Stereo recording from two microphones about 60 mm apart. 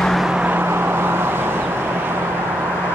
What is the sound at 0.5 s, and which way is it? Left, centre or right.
Vehicle, right.